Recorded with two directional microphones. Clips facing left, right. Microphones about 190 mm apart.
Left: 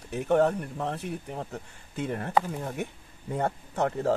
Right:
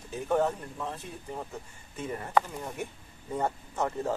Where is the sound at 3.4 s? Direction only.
65° left (ahead or behind).